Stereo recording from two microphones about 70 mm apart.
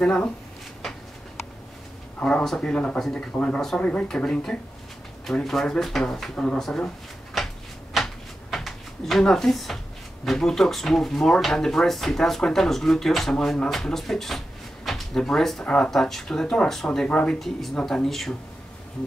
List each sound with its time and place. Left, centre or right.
0.0 s speech: centre
2.1 s speech: centre
2.4 s speech: centre
2.7 s speech: centre
3.0 s speech: centre
3.3 s speech: centre
7.4 s a sound: centre
10.2 s speech: centre
17.4 s speech: centre